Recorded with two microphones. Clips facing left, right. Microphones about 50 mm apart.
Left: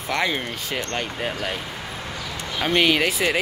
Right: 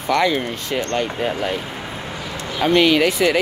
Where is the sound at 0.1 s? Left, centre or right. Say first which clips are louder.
Right 6 dB; centre.